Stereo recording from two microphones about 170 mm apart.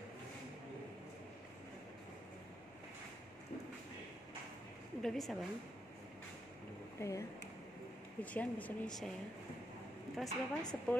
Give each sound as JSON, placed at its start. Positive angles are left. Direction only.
{"t": 5.0, "sound": "a woman's voice", "side_deg": 0}
{"t": 7.0, "sound": "speech", "side_deg": 15}
{"t": 10.1, "sound": "a woman's voice", "side_deg": 0}